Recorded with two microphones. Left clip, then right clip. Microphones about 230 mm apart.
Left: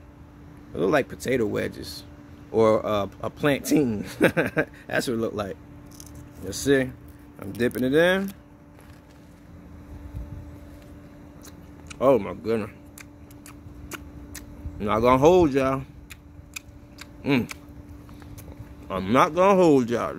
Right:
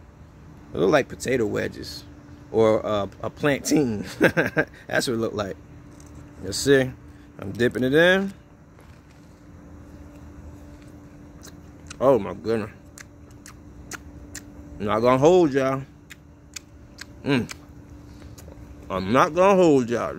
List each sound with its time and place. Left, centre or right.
0.7 s speech: right
1.0 s speech: centre
11.4 s a sound: centre
18.9 s speech: centre